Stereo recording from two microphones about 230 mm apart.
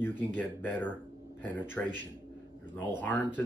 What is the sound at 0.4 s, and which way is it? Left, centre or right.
Speech, centre.